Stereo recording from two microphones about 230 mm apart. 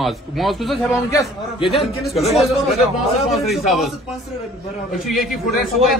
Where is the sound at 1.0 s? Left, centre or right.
Centre.